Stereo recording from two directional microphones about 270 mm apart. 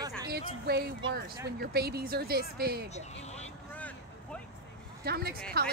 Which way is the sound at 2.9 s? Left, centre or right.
Left.